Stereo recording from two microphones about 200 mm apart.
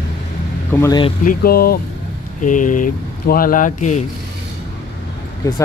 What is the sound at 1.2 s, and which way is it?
Speech, 45° left (ahead or behind).